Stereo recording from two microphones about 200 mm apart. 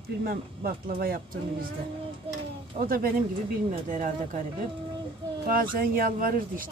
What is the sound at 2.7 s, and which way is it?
Speech, 45° right (ahead or behind).